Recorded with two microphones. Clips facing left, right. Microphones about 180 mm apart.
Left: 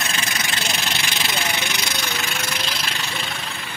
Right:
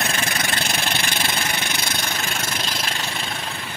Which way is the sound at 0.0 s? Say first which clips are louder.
Right 3 dB; 55° right (ahead or behind).